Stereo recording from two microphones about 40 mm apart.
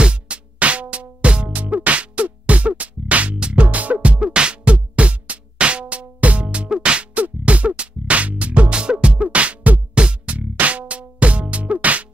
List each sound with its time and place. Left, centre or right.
0.0 s music: right